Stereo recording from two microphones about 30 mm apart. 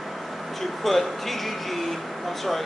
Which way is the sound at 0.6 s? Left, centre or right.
Centre.